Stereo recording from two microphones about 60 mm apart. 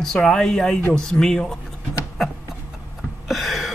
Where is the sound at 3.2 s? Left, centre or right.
Centre.